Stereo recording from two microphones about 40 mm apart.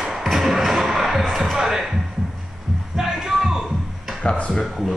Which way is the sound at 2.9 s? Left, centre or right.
Centre.